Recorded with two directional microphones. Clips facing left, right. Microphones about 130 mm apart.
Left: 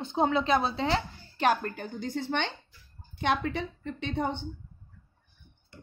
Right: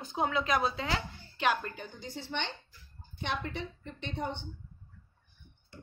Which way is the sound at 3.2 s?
90° left.